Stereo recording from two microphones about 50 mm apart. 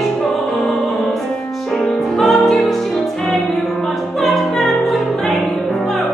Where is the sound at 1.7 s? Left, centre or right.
Centre.